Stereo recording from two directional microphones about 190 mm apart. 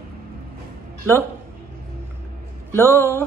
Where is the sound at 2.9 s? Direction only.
15° right (ahead or behind).